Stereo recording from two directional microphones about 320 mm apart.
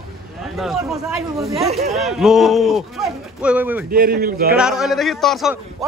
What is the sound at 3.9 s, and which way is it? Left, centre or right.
Speech, right.